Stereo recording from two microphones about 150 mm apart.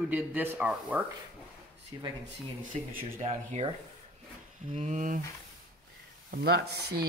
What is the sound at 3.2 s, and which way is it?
Speech, 45° right (ahead or behind).